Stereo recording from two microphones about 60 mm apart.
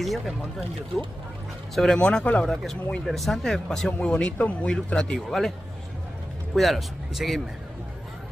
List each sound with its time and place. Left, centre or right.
0.0 s speech: centre
1.8 s speech: centre
2.4 s speech: centre
6.5 s speech: centre